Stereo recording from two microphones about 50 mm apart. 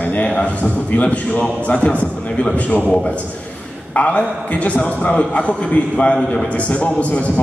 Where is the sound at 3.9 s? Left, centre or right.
Left.